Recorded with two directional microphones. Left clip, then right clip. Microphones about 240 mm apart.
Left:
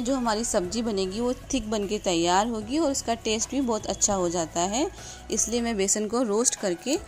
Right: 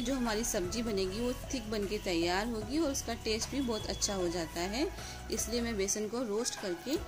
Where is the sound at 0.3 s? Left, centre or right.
Left.